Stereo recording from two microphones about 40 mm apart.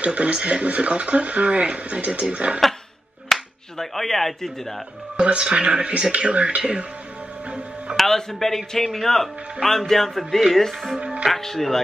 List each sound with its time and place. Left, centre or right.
0.0 s speech: right
3.3 s speech: centre
5.1 s speech: right
7.9 s speech: centre
11.0 s music: right
11.3 s speech: centre